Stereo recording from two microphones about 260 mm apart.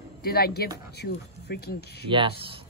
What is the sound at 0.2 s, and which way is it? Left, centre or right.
Speech, left.